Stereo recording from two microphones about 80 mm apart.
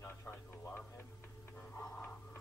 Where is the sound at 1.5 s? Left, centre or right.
Left.